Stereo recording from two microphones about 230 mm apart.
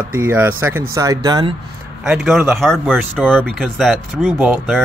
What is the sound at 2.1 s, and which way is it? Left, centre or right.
Speech, centre.